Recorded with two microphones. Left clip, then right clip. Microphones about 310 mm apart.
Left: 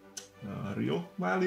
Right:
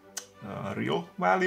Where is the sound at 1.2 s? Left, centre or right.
Right.